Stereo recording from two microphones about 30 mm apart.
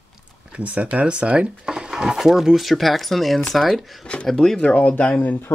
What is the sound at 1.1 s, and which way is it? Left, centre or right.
Speech, right.